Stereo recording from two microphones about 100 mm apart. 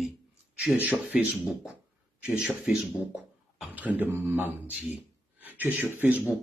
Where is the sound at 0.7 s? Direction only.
15° right (ahead or behind).